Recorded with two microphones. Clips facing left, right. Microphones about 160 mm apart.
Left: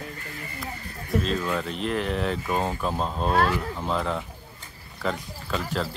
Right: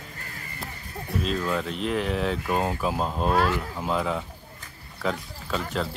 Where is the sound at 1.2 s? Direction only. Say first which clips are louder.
Even; centre (ahead or behind).